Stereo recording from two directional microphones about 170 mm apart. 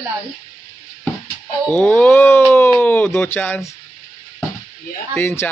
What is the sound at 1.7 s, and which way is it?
Speech, 10° left (ahead or behind).